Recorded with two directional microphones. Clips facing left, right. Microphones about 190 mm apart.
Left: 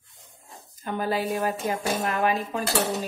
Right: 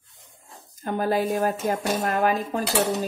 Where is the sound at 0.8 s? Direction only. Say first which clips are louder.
Right 3 dB; 45° right (ahead or behind).